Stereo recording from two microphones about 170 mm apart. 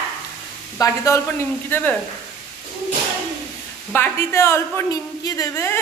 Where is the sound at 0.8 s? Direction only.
15° left (ahead or behind).